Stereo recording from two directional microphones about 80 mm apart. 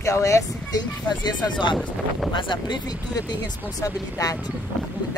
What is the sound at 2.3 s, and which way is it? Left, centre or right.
Speech, left.